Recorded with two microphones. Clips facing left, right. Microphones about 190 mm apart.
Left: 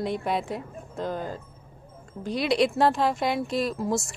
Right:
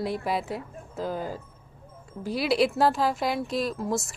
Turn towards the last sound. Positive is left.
turn(degrees=0)  # may be behind; listen again after turning